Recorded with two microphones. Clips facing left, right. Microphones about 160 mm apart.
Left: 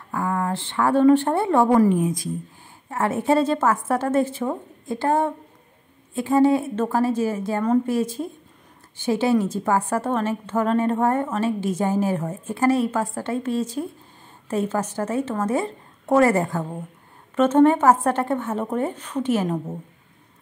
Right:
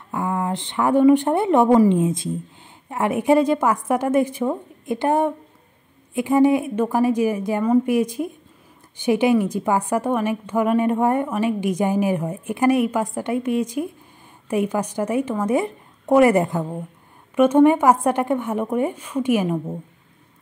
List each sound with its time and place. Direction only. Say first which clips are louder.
0.1 s a woman's voice: right 1 dB; 20° right (ahead or behind)